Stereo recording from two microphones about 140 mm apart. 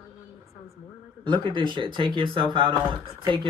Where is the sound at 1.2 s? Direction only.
35° right (ahead or behind).